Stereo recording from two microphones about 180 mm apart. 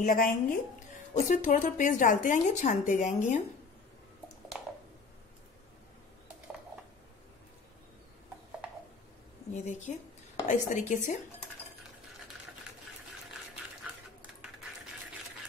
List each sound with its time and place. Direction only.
0.0 s speech: 50° left (ahead or behind)
4.5 s a sound: centre (ahead or behind)
9.5 s a woman's voice: 40° left (ahead or behind)